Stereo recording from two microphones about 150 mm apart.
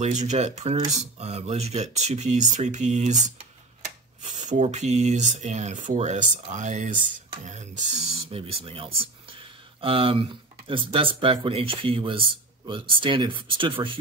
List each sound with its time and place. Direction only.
0.0 s speech: 50° right (ahead or behind); by 13.9 s 35° right (ahead or behind)